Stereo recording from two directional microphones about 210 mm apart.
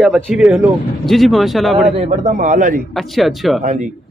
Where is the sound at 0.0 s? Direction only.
5° right (ahead or behind).